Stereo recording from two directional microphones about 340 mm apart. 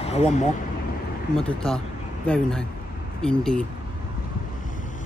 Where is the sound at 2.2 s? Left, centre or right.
Centre.